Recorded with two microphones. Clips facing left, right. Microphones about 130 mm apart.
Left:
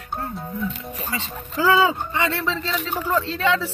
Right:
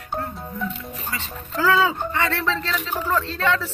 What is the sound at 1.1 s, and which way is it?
Speech, 20° left (ahead or behind).